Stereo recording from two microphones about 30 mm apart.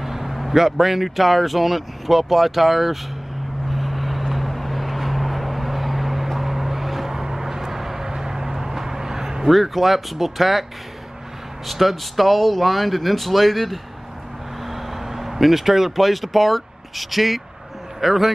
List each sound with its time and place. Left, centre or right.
0.0 s speech: centre
3.7 s vehicle: centre
7.1 s vehicle: centre
9.5 s speech: centre
11.6 s speech: centre
14.7 s speech: centre